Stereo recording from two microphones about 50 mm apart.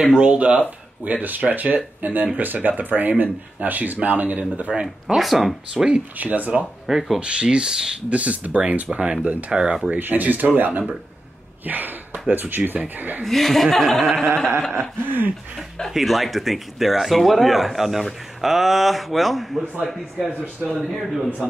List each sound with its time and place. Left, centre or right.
0.2 s speech: right
4.8 s speech: centre
6.1 s speech: right
6.9 s speech: centre
7.2 s speech: centre
8.1 s speech: right
9.9 s speech: right
13.2 s speech: centre
14.3 s speech: right
15.9 s speech: centre